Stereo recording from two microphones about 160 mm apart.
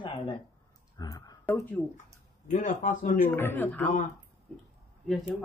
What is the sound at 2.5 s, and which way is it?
Speech, 55° left (ahead or behind).